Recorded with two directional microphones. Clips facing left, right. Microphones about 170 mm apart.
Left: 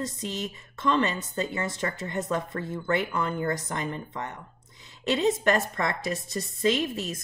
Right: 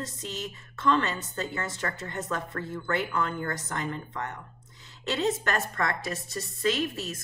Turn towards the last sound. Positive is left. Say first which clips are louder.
# left 2 dB
turn(degrees=20)  # may be behind; listen again after turning